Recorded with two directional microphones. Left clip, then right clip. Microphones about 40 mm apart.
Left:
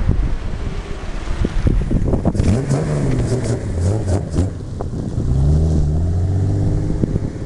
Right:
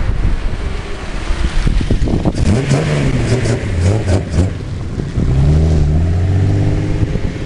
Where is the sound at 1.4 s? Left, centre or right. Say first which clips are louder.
Left 2 dB; right.